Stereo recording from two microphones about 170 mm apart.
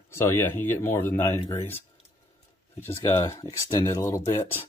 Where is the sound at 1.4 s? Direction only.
40° left (ahead or behind).